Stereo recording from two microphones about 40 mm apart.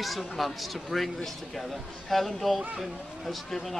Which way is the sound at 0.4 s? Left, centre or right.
Centre.